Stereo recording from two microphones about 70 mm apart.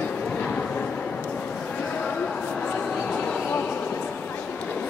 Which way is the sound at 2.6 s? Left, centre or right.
Centre.